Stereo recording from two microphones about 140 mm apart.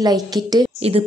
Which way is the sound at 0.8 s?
45° right (ahead or behind).